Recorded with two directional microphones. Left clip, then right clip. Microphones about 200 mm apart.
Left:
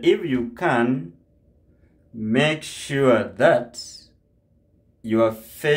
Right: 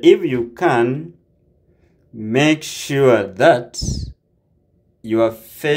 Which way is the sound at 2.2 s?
20° right (ahead or behind).